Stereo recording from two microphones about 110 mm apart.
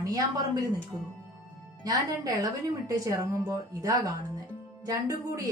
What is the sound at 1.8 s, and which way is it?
Speech, 35° right (ahead or behind).